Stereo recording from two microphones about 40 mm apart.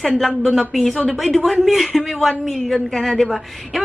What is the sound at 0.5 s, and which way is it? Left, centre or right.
Speech, centre.